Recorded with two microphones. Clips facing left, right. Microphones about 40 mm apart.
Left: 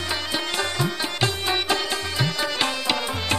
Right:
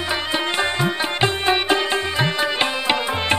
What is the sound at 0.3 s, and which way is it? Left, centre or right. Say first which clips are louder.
Music: right 6 dB; right.